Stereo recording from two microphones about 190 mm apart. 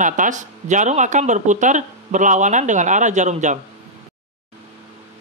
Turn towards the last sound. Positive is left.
turn(degrees=-40)  # may be behind; listen again after turning